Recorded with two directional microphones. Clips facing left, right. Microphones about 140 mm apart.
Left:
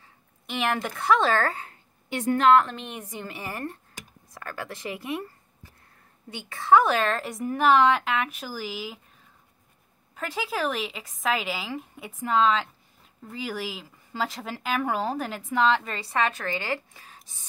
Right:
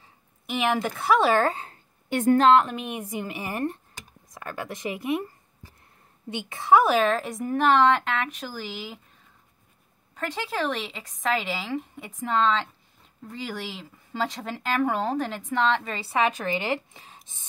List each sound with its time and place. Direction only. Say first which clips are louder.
0.5 s a woman's voice: right 3 dB; 5° right (ahead or behind); by 1.8 s 25° right (ahead or behind)
2.0 s a woman's voice: right 5 dB; 50° right (ahead or behind)
2.7 s a woman's voice: right 5 dB; 10° right (ahead or behind)
6.3 s a woman's voice: even; 15° right (ahead or behind); by 9.0 s centre (ahead or behind)
10.1 s a woman's voice: right 1 dB; 5° left (ahead or behind); by 17.5 s 25° right (ahead or behind)